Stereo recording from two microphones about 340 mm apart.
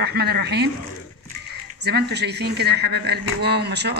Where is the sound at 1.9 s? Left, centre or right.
Right.